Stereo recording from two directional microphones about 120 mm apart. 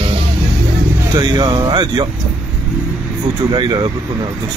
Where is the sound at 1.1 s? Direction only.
40° right (ahead or behind).